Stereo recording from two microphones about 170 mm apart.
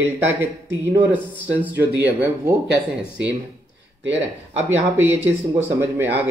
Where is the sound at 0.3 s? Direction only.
15° right (ahead or behind).